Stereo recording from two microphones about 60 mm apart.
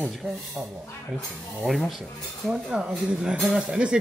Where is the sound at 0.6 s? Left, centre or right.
Centre.